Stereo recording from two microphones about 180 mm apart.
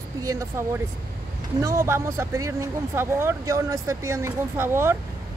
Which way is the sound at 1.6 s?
15° right (ahead or behind).